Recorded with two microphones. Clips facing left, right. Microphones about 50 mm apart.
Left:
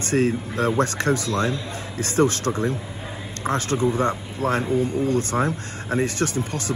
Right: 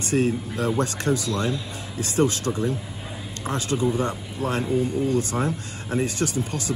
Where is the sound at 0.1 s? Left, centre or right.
Left.